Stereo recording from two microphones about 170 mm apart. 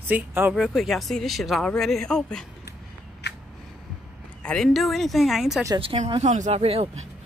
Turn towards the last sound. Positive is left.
turn(degrees=-35)  # may be behind; listen again after turning